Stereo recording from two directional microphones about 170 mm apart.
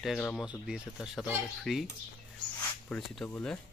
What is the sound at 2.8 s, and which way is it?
Speech, 10° left (ahead or behind).